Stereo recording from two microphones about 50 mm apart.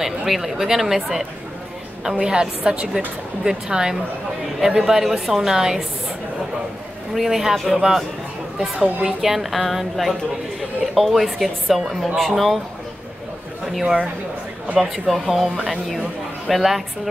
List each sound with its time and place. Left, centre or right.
0.0 s speech: centre
2.0 s a woman's voice: centre
7.2 s a woman's voice: centre
9.0 s speech: centre
13.7 s a woman's voice: centre